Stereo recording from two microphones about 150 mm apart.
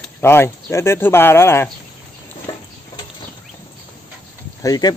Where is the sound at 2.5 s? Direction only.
25° left (ahead or behind).